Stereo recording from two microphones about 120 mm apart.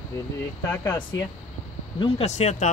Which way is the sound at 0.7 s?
15° left (ahead or behind).